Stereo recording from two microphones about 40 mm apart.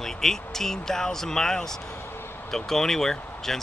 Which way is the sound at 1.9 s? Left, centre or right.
Left.